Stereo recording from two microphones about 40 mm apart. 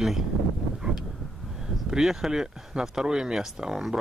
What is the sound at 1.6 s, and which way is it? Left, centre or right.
Speech, centre.